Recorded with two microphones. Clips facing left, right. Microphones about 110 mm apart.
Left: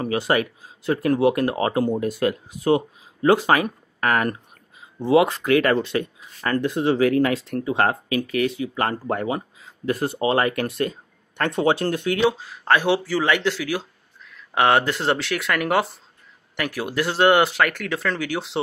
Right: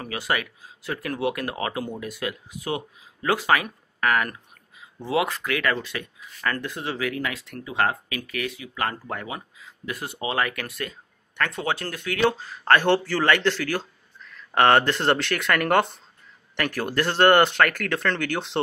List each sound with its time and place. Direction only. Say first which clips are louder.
0.0 s speech: left 7 dB; 30° left (ahead or behind)
12.3 s speech: even; 10° left (ahead or behind)